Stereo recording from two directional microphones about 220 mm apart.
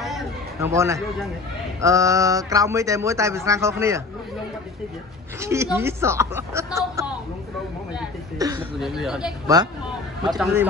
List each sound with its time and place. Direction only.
0.6 s speech: 10° right (ahead or behind)
5.4 s speech: 10° right (ahead or behind)
8.4 s speech: 15° right (ahead or behind)
8.7 s speech: centre (ahead or behind)